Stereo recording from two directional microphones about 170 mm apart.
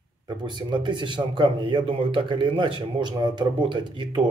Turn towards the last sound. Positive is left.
turn(degrees=-25)  # may be behind; listen again after turning